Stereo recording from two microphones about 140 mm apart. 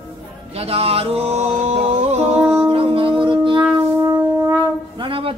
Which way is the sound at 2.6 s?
40° right (ahead or behind).